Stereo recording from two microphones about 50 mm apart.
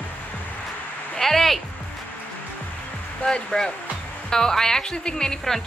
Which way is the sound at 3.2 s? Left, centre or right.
Centre.